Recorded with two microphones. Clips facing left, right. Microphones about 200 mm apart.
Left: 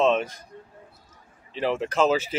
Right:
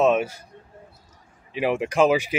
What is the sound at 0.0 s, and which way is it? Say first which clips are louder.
Speech: right 2 dB; 10° right (ahead or behind).